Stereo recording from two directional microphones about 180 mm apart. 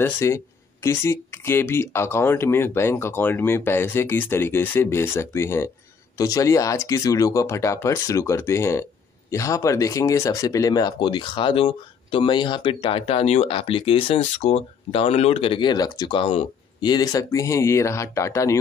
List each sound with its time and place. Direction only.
0.0 s speech: 15° left (ahead or behind)